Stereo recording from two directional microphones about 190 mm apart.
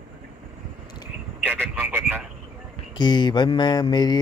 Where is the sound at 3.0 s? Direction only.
25° left (ahead or behind).